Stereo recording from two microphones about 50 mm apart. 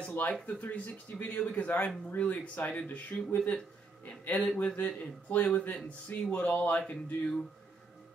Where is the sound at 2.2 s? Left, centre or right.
Left.